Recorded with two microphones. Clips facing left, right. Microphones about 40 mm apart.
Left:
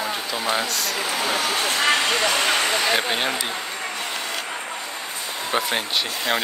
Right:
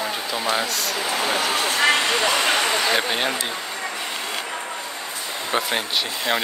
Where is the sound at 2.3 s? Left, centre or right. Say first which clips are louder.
Right 1 dB; right.